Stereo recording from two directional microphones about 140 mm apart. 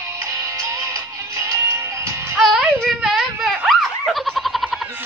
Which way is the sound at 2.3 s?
Centre (ahead or behind).